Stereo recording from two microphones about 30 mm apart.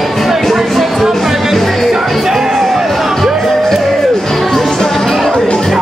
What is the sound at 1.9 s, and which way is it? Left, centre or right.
Music, centre.